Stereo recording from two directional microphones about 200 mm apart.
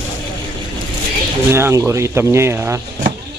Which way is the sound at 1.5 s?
10° right (ahead or behind).